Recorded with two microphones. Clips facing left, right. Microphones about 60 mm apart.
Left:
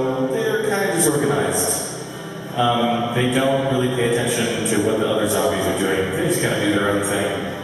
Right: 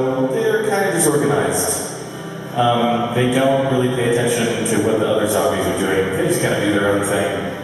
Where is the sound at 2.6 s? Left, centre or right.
Centre.